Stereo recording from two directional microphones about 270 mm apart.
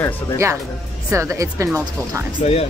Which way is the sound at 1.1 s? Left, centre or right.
Centre.